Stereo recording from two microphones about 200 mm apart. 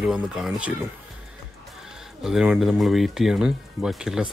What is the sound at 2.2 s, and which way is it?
Speech, 5° right (ahead or behind).